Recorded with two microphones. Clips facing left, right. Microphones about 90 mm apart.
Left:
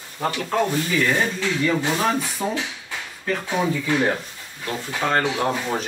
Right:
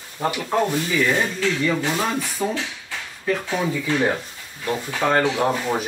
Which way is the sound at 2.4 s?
Centre (ahead or behind).